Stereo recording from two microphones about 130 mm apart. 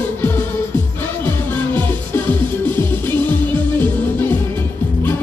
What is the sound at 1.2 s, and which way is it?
Music, 15° left (ahead or behind).